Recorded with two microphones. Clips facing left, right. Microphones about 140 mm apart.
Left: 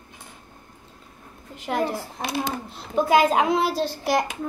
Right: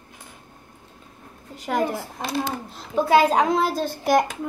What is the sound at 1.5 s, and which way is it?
Speech, 45° right (ahead or behind).